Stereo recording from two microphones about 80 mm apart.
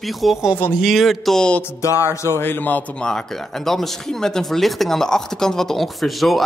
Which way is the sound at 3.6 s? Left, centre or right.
Centre.